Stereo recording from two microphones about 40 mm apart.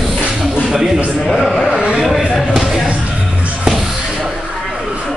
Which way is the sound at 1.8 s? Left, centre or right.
Centre.